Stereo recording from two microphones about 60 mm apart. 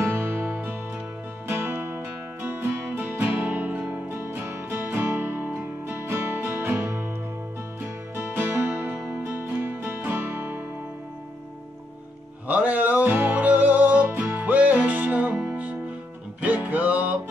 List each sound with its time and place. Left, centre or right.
0.0 s music: right
8.2 s music: right
12.4 s music: right